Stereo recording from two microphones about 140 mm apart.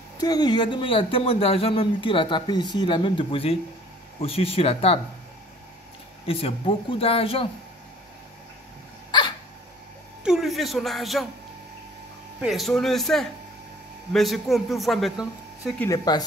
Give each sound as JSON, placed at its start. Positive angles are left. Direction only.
{"t": 0.2, "sound": "speech", "side_deg": 30}
{"t": 6.2, "sound": "speech", "side_deg": 40}
{"t": 10.2, "sound": "speech", "side_deg": -5}
{"t": 12.4, "sound": "a man's voice", "side_deg": 0}
{"t": 16.1, "sound": "speech", "side_deg": 30}